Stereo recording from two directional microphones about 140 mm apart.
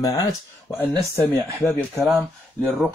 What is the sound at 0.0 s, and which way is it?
Speech, 25° left (ahead or behind).